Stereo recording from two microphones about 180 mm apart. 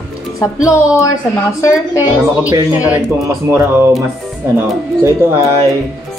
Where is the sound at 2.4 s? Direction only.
10° right (ahead or behind).